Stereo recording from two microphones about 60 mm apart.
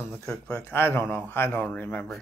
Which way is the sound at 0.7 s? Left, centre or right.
Left.